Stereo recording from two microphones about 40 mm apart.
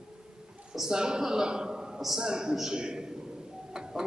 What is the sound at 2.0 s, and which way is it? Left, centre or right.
Speech, centre.